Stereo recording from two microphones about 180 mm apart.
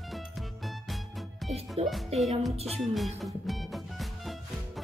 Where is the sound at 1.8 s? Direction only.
35° right (ahead or behind).